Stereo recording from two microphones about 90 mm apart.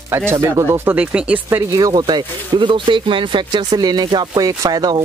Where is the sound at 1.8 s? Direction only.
45° right (ahead or behind); by 3.6 s 65° right (ahead or behind).